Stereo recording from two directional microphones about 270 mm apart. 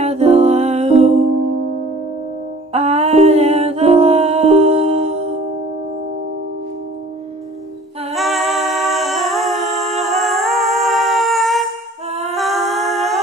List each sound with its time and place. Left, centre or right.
0.0 s music: right
2.7 s humming: right
8.1 s a capella: centre
12.4 s a sound: centre